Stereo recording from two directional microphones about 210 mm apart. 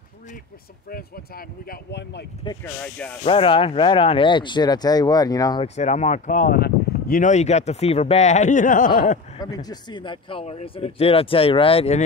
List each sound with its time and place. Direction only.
0.8 s speech: 45° left (ahead or behind)
2.6 s speech: 5° left (ahead or behind)
3.3 s speech: 25° left (ahead or behind)
5.8 s speech: 30° left (ahead or behind)
9.4 s speech: 20° left (ahead or behind)